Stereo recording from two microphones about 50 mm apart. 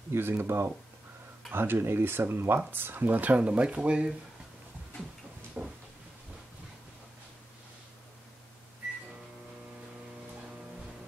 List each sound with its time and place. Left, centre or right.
0.1 s speech: right
5.6 s cupboard open or close: centre